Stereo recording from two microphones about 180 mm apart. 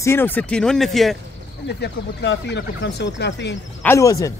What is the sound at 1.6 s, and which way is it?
Speech, 70° left (ahead or behind).